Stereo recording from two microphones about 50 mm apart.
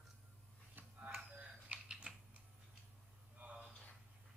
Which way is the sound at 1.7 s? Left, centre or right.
Right.